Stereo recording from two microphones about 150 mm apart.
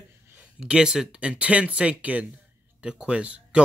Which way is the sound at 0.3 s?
10° right (ahead or behind).